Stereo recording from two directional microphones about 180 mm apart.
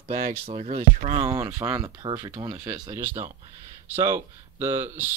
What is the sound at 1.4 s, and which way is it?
Speech, 15° right (ahead or behind).